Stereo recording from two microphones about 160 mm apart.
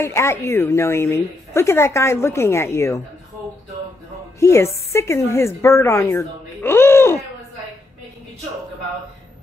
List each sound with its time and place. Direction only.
0.0 s a woman's voice: 15° left (ahead or behind)
4.4 s music: 15° left (ahead or behind)
4.9 s a woman's voice: 15° left (ahead or behind)